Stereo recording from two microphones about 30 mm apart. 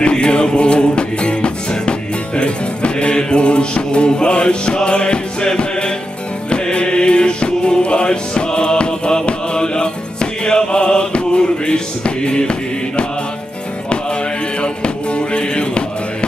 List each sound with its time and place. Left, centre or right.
0.0 s music: left
10.4 s chant: left
14.6 s music: left